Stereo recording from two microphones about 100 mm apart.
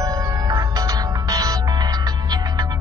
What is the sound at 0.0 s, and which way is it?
Music, 40° right (ahead or behind).